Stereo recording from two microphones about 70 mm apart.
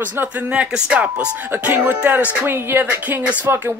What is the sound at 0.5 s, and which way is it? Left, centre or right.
Speech, centre.